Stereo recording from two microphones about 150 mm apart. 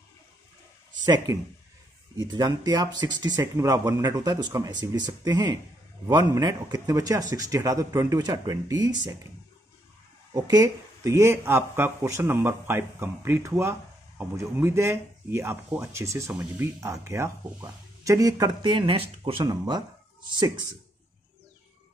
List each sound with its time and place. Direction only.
1.0 s speech: 25° right (ahead or behind)
10.3 s speech: 25° right (ahead or behind)
19.4 s speech: 25° right (ahead or behind)